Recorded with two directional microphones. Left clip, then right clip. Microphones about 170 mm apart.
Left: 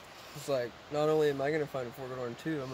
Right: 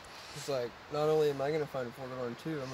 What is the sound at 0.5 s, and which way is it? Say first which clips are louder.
Speech: left 2 dB; 10° left (ahead or behind).